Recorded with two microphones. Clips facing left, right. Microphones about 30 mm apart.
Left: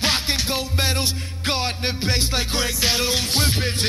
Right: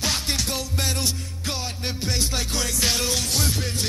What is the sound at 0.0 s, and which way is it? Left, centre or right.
Music, left.